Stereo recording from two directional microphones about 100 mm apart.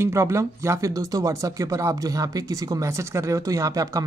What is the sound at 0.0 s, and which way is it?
Speech, 30° right (ahead or behind).